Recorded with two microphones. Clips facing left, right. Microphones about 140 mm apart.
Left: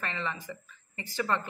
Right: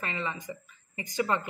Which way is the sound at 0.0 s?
15° right (ahead or behind).